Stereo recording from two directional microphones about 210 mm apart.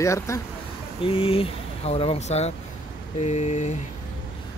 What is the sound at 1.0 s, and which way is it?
Speech, 25° left (ahead or behind).